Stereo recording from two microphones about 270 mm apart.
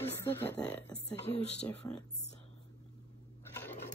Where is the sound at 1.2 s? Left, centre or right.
Left.